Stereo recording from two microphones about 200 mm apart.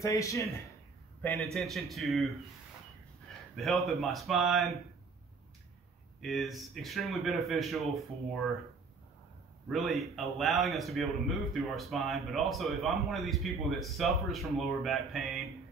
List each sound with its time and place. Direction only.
0.0 s speech: 15° left (ahead or behind)
1.2 s speech: 5° left (ahead or behind)
3.5 s speech: centre (ahead or behind)
6.2 s speech: centre (ahead or behind)
9.7 s speech: centre (ahead or behind)